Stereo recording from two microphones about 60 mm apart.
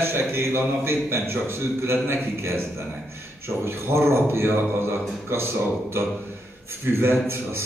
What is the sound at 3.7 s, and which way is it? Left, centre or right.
A man's voice, right.